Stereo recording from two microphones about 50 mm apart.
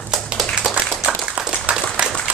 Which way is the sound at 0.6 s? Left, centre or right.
Centre.